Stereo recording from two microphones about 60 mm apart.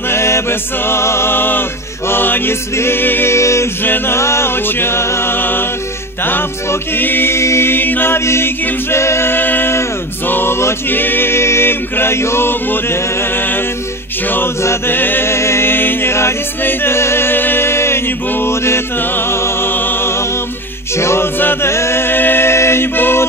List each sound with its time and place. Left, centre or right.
0.1 s music: left
2.0 s male singing: left
3.3 s a capella: left
3.8 s male singing: left
4.2 s a capella: left
4.6 s male singing: left
7.0 s male singing: left
14.9 s male singing: left
16.6 s a capella: left
19.7 s music: left
21.0 s a capella: left
21.6 s mantra: left